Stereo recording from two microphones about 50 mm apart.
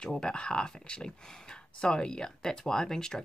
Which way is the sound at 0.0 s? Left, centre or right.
Centre.